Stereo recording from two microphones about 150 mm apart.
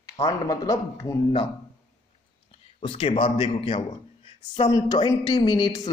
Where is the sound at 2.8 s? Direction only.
35° left (ahead or behind).